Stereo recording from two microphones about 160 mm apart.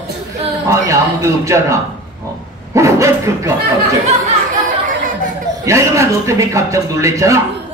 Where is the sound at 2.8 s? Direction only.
20° right (ahead or behind).